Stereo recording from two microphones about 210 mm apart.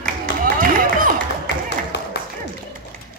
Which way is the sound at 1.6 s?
55° left (ahead or behind).